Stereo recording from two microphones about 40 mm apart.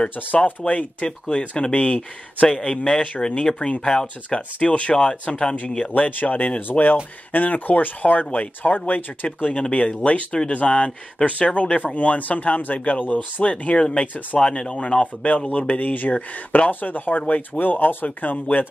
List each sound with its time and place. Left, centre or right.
0.5 s speech: left
2.4 s speech: left
5.9 s speech: left
9.5 s speech: left
15.3 s speech: left
16.9 s speech: left